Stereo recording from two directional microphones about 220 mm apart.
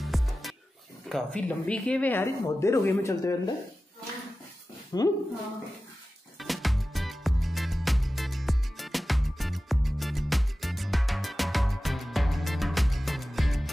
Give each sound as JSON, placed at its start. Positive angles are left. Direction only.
{"t": 0.0, "sound": "music", "side_deg": 0}
{"t": 1.0, "sound": "a woman's voice", "side_deg": 5}
{"t": 4.9, "sound": "a woman's voice", "side_deg": 15}
{"t": 6.3, "sound": "music", "side_deg": 0}